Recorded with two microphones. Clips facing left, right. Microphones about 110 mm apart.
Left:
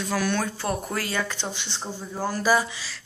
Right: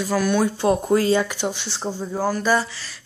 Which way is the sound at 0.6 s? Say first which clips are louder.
Right 10 dB; 20° right (ahead or behind).